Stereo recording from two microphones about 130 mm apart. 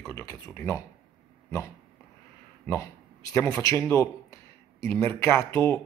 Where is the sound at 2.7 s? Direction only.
20° left (ahead or behind).